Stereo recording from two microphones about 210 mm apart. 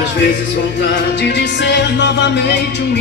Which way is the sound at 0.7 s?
55° left (ahead or behind).